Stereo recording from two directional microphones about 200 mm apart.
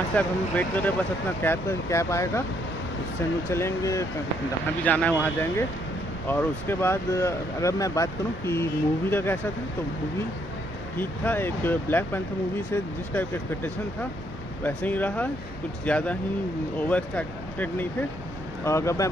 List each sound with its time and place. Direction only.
0.1 s speech: 5° left (ahead or behind)
3.4 s speech: 15° left (ahead or behind)
11.0 s speech: 10° left (ahead or behind)
14.6 s speech: 10° left (ahead or behind)